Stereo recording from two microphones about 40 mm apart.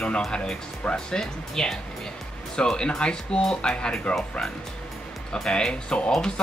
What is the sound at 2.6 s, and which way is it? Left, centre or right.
Speech, left.